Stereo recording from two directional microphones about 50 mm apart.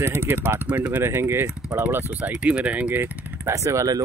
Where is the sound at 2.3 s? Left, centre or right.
Right.